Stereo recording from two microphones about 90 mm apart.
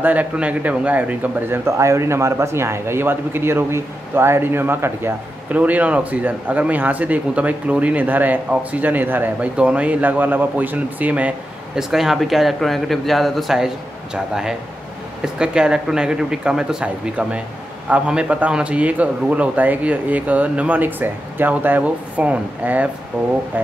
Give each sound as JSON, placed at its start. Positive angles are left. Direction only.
{"t": 0.0, "sound": "speech", "side_deg": -15}
{"t": 1.7, "sound": "speech", "side_deg": -35}
{"t": 11.9, "sound": "speech", "side_deg": -5}